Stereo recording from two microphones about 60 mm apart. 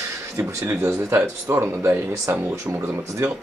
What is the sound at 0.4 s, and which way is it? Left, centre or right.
Speech, right.